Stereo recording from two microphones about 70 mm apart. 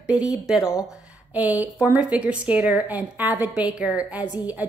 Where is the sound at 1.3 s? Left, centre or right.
Right.